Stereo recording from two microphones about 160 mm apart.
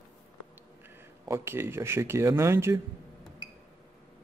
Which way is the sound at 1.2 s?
15° right (ahead or behind).